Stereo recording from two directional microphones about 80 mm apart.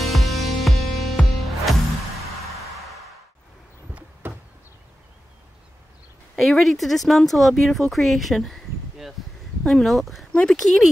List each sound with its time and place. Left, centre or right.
0.0 s music: centre
4.2 s a sound: right
6.3 s speech: centre